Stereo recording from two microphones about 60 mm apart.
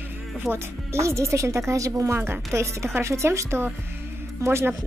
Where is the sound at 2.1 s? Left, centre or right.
Right.